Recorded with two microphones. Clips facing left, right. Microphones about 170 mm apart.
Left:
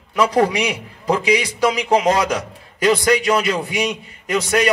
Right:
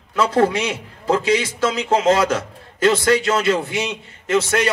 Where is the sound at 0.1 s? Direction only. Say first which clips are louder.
Even; 15° left (ahead or behind).